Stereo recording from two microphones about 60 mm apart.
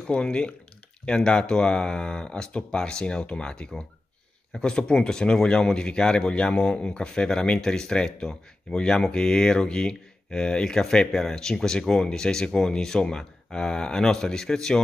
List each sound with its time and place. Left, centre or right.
0.0 s speech: centre